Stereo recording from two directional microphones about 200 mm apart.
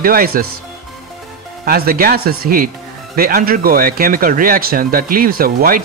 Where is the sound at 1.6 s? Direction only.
50° right (ahead or behind).